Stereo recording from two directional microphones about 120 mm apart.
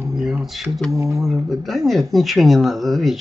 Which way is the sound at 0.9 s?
25° right (ahead or behind).